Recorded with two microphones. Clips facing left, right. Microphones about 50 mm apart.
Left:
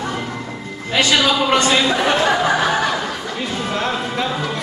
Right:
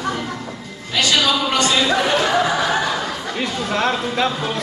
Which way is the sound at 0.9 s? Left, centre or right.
Left.